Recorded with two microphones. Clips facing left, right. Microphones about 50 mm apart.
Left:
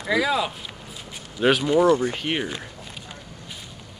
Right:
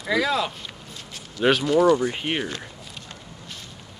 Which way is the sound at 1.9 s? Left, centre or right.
Centre.